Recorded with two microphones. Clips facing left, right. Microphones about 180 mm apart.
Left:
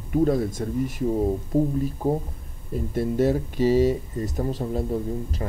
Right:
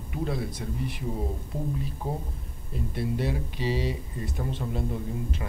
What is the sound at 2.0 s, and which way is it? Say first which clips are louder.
Speech: left 9 dB; 40° left (ahead or behind).